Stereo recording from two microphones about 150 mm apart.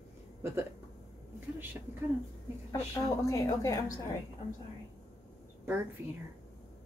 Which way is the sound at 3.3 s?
20° left (ahead or behind).